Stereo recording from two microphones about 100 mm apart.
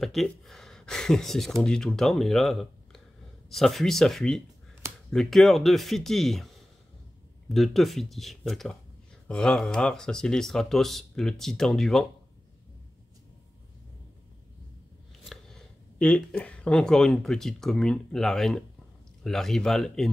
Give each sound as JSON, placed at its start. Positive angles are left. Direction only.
{"t": 0.0, "sound": "speech", "side_deg": 0}
{"t": 15.2, "sound": "speech", "side_deg": 5}